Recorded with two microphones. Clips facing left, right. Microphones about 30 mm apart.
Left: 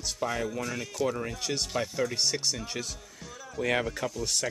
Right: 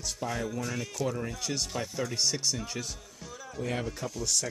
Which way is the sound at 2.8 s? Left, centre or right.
Left.